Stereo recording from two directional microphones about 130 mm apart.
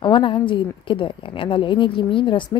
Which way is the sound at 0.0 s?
40° left (ahead or behind).